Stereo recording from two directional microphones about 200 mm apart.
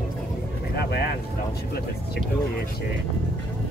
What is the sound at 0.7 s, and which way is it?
Vehicle, 50° left (ahead or behind).